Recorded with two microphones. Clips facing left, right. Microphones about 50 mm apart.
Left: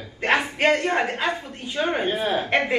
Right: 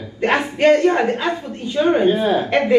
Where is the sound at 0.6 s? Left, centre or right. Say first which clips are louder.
Right 7 dB; left.